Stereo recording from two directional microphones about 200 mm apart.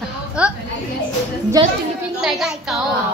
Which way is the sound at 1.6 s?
20° right (ahead or behind).